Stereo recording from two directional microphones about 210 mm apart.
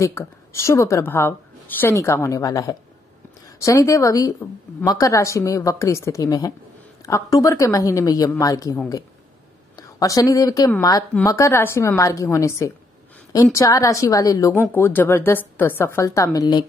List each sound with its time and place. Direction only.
0.0 s a woman's voice: 15° left (ahead or behind)